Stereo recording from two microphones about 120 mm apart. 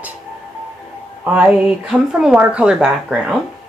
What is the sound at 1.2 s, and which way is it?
Music, 10° right (ahead or behind).